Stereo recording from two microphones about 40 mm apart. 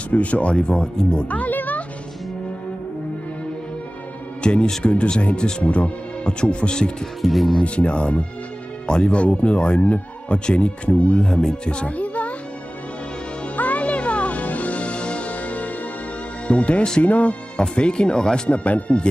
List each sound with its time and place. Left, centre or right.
0.1 s speech: left
1.3 s music: left
4.4 s music: left
4.8 s speech: left
7.2 s speech: centre
7.6 s speech: left
11.2 s speech: left
13.6 s music: left
16.4 s speech: left